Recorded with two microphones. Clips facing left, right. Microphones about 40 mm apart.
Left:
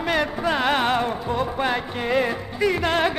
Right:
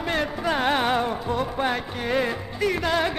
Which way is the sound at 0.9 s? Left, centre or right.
Left.